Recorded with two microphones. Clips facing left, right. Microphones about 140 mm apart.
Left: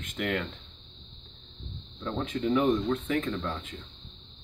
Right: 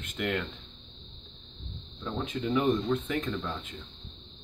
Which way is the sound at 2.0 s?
5° right (ahead or behind).